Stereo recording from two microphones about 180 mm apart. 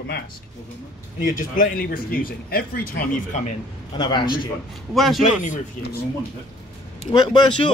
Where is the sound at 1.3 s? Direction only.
50° left (ahead or behind).